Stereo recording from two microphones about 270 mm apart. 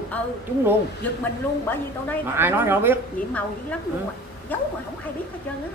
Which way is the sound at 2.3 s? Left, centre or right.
Centre.